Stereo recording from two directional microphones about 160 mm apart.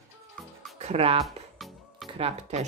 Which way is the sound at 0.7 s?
40° right (ahead or behind).